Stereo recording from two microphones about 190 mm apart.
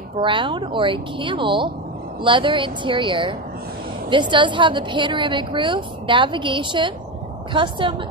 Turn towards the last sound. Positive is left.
turn(degrees=-25)  # may be behind; listen again after turning